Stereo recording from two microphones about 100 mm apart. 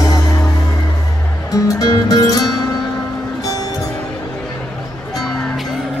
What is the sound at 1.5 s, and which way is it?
Music, 35° left (ahead or behind).